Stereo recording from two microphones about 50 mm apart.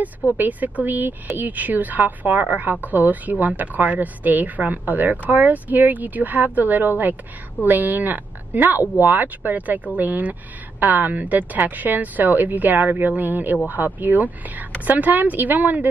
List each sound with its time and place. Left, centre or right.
0.4 s speech: right